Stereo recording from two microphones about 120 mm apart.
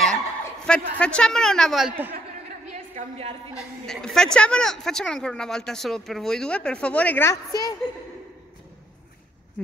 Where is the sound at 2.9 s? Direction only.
65° right (ahead or behind).